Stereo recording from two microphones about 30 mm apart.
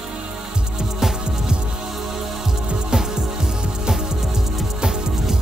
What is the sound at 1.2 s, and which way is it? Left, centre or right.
Music, right.